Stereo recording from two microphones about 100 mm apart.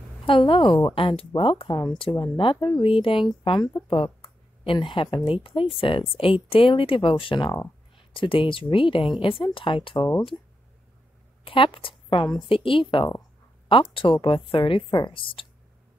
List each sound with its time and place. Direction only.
0.2 s a woman's voice: 60° left (ahead or behind)
3.4 s speech: 50° left (ahead or behind)
3.8 s a woman's voice: 65° left (ahead or behind)
11.4 s a woman's voice: 60° left (ahead or behind)